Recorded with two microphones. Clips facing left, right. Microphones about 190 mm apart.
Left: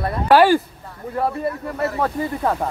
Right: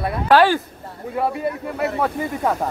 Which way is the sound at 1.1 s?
5° right (ahead or behind).